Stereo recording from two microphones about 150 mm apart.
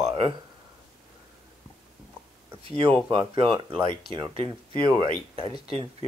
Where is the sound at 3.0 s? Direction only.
35° right (ahead or behind).